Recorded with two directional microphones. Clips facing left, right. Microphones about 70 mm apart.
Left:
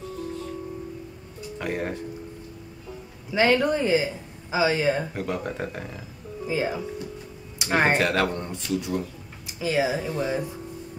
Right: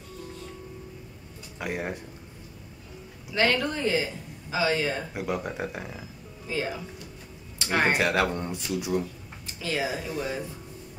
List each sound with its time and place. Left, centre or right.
1.6 s speech: centre
3.3 s speech: centre
5.1 s speech: centre
6.4 s speech: centre
7.5 s music: centre
7.9 s speech: centre
9.5 s a sound: centre
9.8 s speech: centre